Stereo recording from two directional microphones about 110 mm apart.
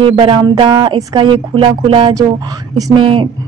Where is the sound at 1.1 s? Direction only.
50° right (ahead or behind).